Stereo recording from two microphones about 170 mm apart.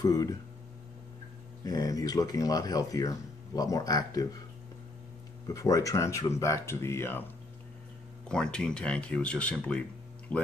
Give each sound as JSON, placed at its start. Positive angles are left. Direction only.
{"t": 0.0, "sound": "speech", "side_deg": 20}
{"t": 1.6, "sound": "speech", "side_deg": 20}
{"t": 5.5, "sound": "speech", "side_deg": 20}
{"t": 8.3, "sound": "speech", "side_deg": 5}